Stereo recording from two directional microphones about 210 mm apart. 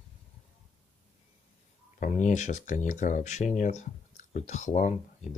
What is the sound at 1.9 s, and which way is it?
Speech, 35° left (ahead or behind).